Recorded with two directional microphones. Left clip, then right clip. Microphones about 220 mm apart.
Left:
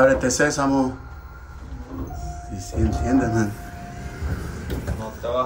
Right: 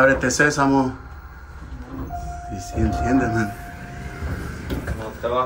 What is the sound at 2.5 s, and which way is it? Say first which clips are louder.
Speech: right 2 dB; 5° left (ahead or behind).